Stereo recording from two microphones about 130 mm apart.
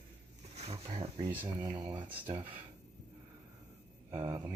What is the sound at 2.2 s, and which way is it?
Speech, 15° right (ahead or behind).